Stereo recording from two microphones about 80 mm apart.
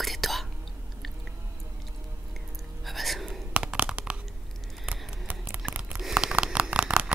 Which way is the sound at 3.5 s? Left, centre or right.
Centre.